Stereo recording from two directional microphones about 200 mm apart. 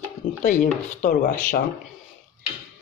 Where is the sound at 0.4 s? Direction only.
40° left (ahead or behind).